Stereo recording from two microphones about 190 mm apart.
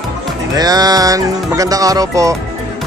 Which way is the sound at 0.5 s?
20° right (ahead or behind).